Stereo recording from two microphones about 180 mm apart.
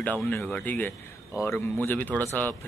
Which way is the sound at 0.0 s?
10° left (ahead or behind).